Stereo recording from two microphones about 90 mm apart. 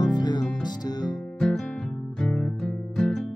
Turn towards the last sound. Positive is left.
turn(degrees=10)  # may be behind; listen again after turning